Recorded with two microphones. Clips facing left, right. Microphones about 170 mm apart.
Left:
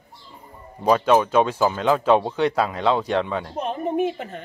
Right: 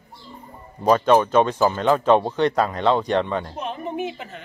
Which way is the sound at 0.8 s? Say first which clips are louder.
Right 1 dB; 5° left (ahead or behind).